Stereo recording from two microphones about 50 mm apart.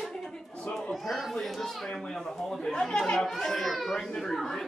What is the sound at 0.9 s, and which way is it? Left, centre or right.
A man's voice, centre.